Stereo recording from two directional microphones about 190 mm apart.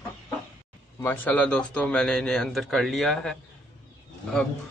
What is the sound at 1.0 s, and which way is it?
A man's voice, 10° left (ahead or behind).